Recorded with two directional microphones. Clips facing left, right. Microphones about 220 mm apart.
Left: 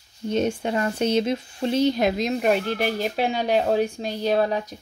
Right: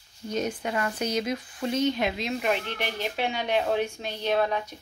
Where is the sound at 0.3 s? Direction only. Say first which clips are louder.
Left 6 dB; 30° left (ahead or behind).